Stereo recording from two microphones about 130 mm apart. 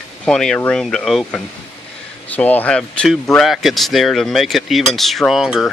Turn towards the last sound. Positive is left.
turn(degrees=-5)  # may be behind; listen again after turning